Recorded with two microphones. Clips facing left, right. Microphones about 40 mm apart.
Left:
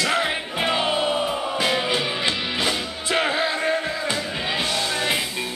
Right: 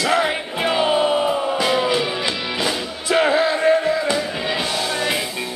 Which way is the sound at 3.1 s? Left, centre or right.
Centre.